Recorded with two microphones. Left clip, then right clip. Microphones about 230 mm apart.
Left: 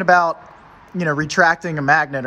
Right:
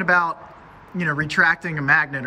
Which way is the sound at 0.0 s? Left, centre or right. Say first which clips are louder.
Left 4 dB; centre.